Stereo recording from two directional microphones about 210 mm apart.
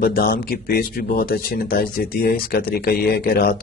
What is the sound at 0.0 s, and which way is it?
Speech, 45° left (ahead or behind).